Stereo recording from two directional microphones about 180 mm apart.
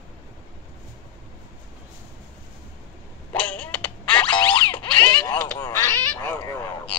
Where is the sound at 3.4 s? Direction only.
5° left (ahead or behind).